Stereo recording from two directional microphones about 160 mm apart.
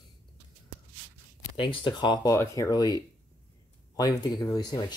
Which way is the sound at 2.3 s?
20° left (ahead or behind).